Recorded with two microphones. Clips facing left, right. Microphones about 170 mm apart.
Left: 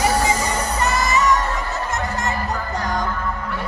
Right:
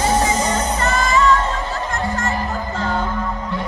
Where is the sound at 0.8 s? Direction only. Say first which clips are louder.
Right 1 dB; 20° left (ahead or behind).